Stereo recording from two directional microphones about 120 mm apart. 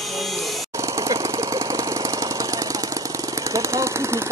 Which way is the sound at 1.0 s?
25° right (ahead or behind).